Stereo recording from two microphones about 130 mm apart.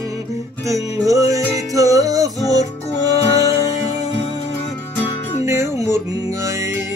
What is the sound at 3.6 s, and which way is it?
Music, 60° left (ahead or behind).